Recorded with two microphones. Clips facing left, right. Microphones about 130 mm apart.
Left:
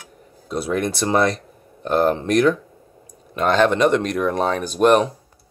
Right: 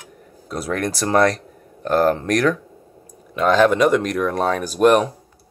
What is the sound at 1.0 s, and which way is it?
Speech, 10° left (ahead or behind).